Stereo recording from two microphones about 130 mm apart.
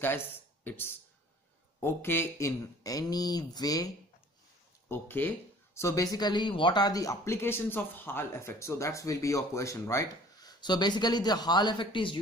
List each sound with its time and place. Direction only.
0.0 s speech: 15° left (ahead or behind)
4.8 s speech: 20° left (ahead or behind); by 12.2 s 40° left (ahead or behind)